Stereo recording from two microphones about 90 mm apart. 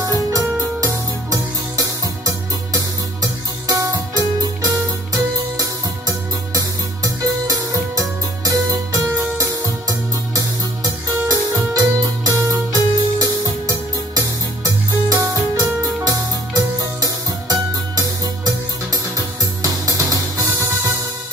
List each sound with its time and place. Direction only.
0.0 s music: 40° right (ahead or behind)
2.2 s music: 40° right (ahead or behind)